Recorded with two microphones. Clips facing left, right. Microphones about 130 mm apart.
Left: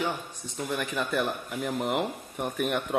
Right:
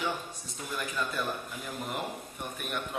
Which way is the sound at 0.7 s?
70° left (ahead or behind).